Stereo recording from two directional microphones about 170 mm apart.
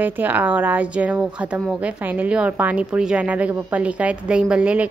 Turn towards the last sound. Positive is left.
turn(degrees=-5)  # may be behind; listen again after turning